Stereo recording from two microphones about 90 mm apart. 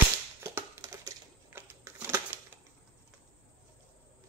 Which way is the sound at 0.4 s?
25° right (ahead or behind).